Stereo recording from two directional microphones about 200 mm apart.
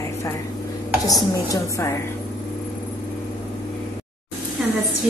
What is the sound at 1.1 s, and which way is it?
Speech, 15° left (ahead or behind).